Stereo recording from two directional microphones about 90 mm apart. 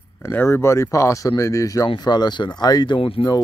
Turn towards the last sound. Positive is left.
turn(degrees=90)